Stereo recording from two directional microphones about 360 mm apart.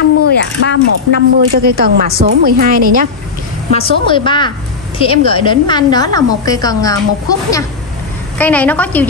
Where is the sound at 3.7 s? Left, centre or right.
Centre.